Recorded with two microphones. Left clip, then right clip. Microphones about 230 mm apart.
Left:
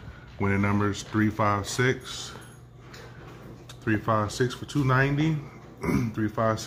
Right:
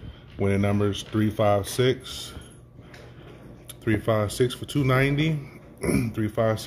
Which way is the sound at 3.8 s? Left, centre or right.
Centre.